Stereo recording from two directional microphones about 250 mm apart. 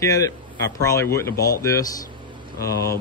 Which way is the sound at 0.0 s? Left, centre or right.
Centre.